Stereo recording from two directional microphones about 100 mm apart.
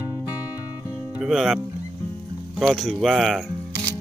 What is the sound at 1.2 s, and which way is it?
Speech, 5° right (ahead or behind).